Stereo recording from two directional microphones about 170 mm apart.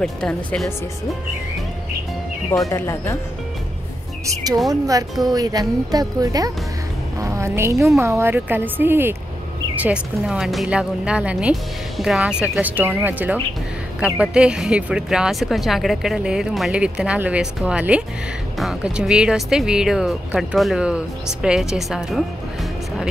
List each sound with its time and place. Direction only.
0.0 s speech: 5° left (ahead or behind)
2.7 s speech: 15° left (ahead or behind)
4.3 s speech: 20° right (ahead or behind)
7.2 s a sound: 15° right (ahead or behind)
8.0 s speech: 15° right (ahead or behind)